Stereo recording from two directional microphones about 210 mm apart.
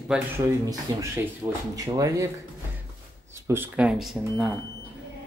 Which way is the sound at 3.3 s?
10° right (ahead or behind).